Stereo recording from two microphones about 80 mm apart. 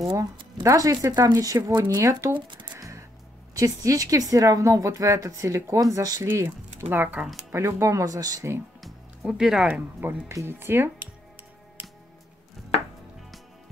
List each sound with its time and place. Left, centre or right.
0.6 s speech: right
2.3 s speech: right
3.5 s speech: right
5.9 s speech: right
6.2 s speech: right
7.5 s speech: right
8.8 s music: centre
9.7 s speech: right